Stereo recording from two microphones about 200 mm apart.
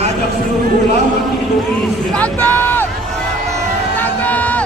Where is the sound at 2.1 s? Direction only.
10° left (ahead or behind).